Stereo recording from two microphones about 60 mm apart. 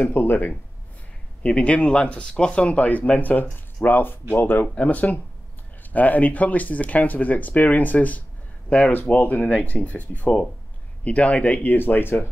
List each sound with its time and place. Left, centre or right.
0.0 s speech: left
1.4 s speech: left